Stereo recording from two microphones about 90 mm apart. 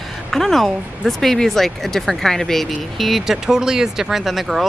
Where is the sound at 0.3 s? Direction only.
Centre (ahead or behind).